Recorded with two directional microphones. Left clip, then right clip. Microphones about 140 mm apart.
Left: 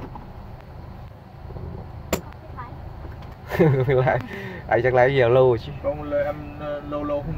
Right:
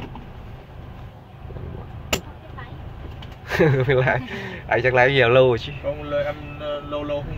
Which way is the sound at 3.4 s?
15° left (ahead or behind).